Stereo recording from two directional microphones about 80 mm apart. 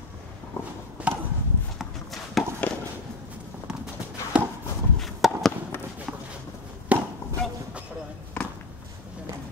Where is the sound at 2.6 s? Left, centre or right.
Centre.